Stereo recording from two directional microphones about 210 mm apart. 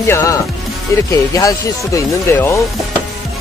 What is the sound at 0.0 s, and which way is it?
Music, 15° left (ahead or behind).